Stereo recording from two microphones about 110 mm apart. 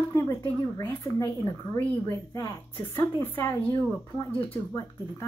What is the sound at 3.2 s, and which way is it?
Music, 20° left (ahead or behind).